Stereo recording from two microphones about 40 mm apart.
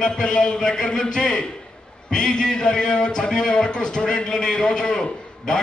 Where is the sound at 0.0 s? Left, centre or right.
Centre.